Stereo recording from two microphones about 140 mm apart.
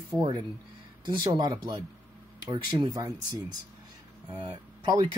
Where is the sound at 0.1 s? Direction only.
30° right (ahead or behind).